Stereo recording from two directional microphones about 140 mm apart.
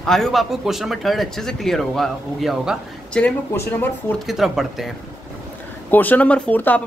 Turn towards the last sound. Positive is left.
turn(degrees=10)  # may be behind; listen again after turning